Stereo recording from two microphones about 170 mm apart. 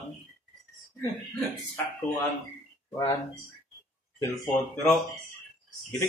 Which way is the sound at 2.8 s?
20° left (ahead or behind).